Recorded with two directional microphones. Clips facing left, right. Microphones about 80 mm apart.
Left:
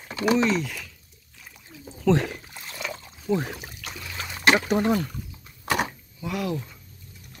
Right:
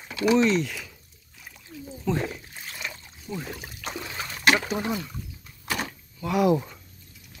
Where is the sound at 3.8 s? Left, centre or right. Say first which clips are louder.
Right 4 dB; right.